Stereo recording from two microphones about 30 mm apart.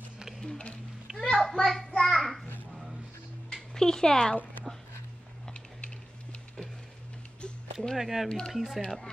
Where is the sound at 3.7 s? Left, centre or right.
Left.